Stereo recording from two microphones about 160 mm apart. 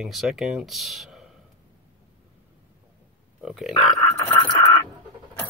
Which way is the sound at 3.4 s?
5° right (ahead or behind).